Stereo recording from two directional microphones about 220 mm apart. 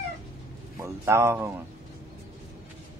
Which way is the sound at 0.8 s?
10° right (ahead or behind).